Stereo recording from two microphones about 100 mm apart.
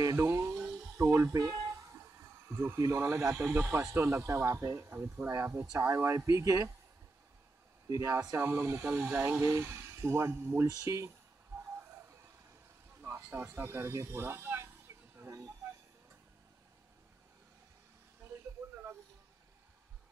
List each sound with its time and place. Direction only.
0.0 s music: 30° right (ahead or behind)
2.0 s speech: 25° right (ahead or behind)
7.9 s speech: 30° right (ahead or behind)
10.7 s a sound: 30° right (ahead or behind)
13.0 s speech: 20° right (ahead or behind)
15.1 s snake: 30° right (ahead or behind)